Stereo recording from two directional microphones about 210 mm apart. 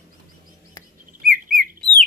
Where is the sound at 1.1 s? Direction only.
40° right (ahead or behind).